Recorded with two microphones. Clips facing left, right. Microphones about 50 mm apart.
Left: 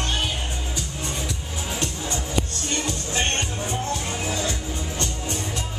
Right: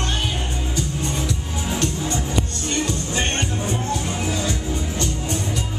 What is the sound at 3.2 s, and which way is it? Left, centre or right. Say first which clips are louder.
Music: right 1 dB; centre.